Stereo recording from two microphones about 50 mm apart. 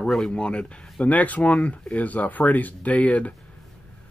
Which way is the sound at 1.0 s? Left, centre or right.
Left.